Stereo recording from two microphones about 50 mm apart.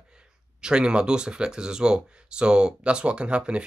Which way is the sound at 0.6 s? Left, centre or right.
Centre.